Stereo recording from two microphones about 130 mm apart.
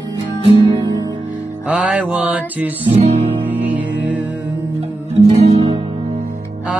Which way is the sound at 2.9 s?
45° right (ahead or behind).